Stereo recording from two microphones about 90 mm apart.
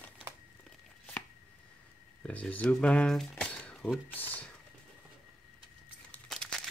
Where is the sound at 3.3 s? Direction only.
15° left (ahead or behind).